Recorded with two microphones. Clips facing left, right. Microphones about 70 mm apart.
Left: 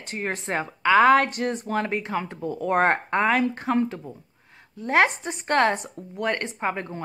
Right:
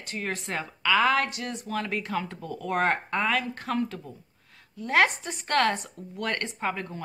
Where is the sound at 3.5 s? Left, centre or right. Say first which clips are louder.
Left 5 dB; left.